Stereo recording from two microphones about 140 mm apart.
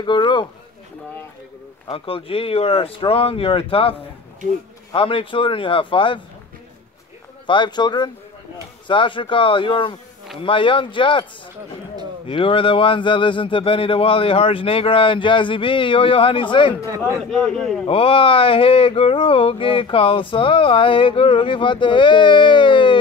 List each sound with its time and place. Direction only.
0.0 s speech: 35° left (ahead or behind)
1.9 s speech: 40° left (ahead or behind)
4.9 s speech: 40° left (ahead or behind)
7.4 s speech: 35° left (ahead or behind)
12.3 s speech: 40° left (ahead or behind)
17.3 s a man's voice: 5° left (ahead or behind)
17.8 s speech: 40° left (ahead or behind)